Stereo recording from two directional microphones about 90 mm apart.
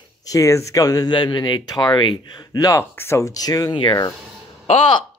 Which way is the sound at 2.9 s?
30° left (ahead or behind).